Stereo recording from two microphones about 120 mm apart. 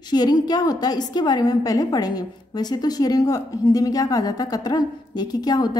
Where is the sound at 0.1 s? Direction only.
35° left (ahead or behind).